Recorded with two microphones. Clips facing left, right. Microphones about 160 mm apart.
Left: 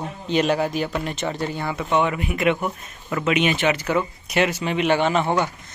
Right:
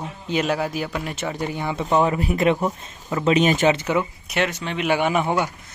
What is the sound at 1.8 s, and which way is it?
Speech, 35° right (ahead or behind).